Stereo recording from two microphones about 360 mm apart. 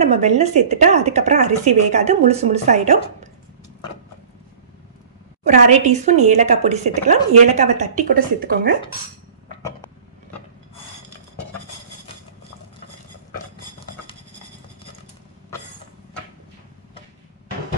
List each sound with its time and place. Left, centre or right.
0.0 s speech: centre
5.4 s speech: centre